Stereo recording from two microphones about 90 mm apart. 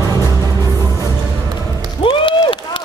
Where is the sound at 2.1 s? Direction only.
70° left (ahead or behind).